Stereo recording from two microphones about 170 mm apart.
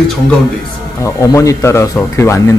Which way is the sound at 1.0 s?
20° left (ahead or behind).